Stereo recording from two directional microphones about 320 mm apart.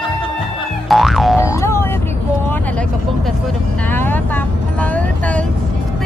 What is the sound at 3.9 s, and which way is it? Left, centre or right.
Vehicle, centre.